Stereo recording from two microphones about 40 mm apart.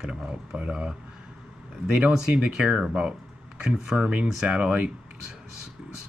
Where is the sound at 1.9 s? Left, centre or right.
Right.